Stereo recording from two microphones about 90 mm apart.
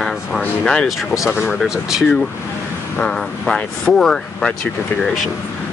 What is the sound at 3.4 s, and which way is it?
Speech, 5° left (ahead or behind).